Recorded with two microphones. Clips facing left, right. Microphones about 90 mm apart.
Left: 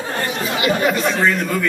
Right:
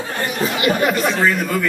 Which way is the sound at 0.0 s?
25° left (ahead or behind).